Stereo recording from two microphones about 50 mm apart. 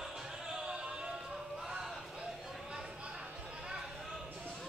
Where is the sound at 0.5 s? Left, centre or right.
Centre.